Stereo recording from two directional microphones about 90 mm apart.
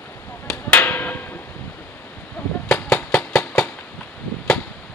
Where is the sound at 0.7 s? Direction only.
20° left (ahead or behind).